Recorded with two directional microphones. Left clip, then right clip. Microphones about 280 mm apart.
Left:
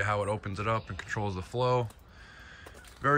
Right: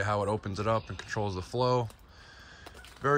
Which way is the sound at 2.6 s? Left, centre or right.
Centre.